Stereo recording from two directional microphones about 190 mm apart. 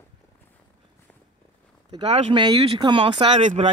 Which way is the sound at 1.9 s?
25° right (ahead or behind).